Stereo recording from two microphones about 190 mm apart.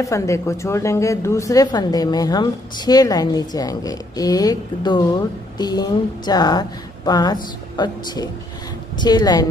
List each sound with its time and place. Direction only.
0.0 s a woman's voice: 15° left (ahead or behind)